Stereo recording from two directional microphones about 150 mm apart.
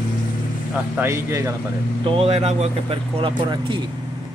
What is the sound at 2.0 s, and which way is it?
Speech, 40° right (ahead or behind).